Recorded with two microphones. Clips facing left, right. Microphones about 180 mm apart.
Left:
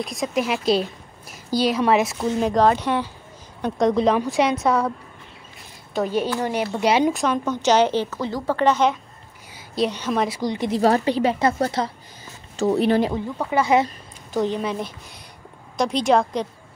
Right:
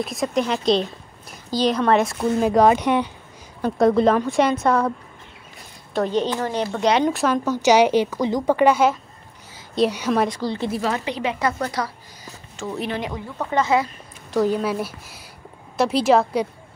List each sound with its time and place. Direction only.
0.0 s speech: centre (ahead or behind); by 3.1 s 15° right (ahead or behind)
3.6 s speech: 5° right (ahead or behind)
5.9 s a woman's voice: 10° left (ahead or behind); by 10.2 s 10° right (ahead or behind)
10.2 s a woman's voice: 10° left (ahead or behind)
10.8 s a woman's voice: 35° left (ahead or behind)
13.4 s a woman's voice: 10° left (ahead or behind)
14.3 s speech: 5° right (ahead or behind)